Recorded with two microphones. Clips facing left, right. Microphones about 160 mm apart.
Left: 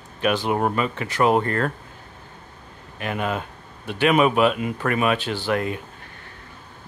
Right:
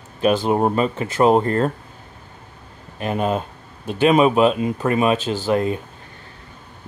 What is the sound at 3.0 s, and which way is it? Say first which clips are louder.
Speech: right 5 dB; 30° right (ahead or behind).